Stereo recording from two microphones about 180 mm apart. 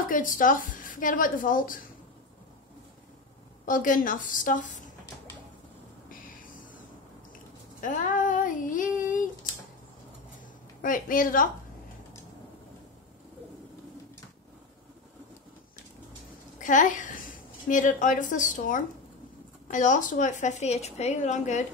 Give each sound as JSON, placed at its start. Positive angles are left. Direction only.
{"t": 0.1, "sound": "a woman's voice", "side_deg": 50}
{"t": 3.6, "sound": "a woman's voice", "side_deg": 45}
{"t": 7.8, "sound": "a sound", "side_deg": 45}
{"t": 10.8, "sound": "a woman's voice", "side_deg": 50}
{"t": 16.5, "sound": "a woman's voice", "side_deg": 45}